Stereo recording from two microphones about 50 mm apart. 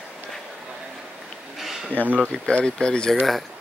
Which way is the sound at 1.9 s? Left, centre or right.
Left.